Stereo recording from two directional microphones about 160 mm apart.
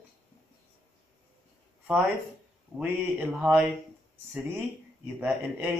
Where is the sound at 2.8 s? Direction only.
10° right (ahead or behind).